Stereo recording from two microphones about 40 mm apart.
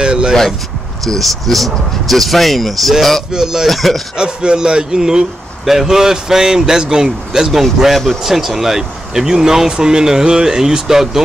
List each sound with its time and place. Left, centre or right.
0.0 s speech: right
1.0 s speech: centre
3.3 s speech: centre
3.6 s speech: centre
4.2 s speech: centre
7.8 s speech: centre